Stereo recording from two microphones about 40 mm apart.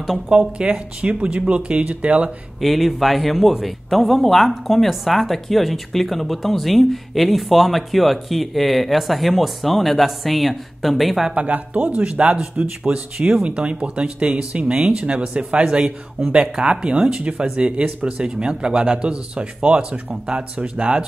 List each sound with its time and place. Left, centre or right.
0.3 s speech: right
2.6 s speech: centre
11.3 s speech: right